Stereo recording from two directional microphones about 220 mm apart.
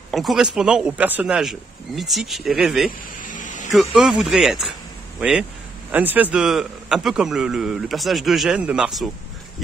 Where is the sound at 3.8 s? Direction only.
5° right (ahead or behind).